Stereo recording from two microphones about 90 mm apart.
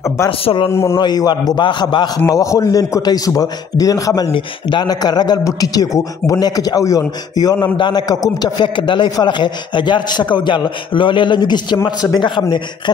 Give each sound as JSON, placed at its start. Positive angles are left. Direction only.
{"t": 0.3, "sound": "a man's voice", "side_deg": 90}
{"t": 0.7, "sound": "a man's voice", "side_deg": 30}
{"t": 0.9, "sound": "a man's voice", "side_deg": 50}
{"t": 1.6, "sound": "a man's voice", "side_deg": 60}
{"t": 2.2, "sound": "a man's voice", "side_deg": 40}
{"t": 4.3, "sound": "a man's voice", "side_deg": 60}
{"t": 7.7, "sound": "a man's voice", "side_deg": 55}
{"t": 8.7, "sound": "a man's voice", "side_deg": 65}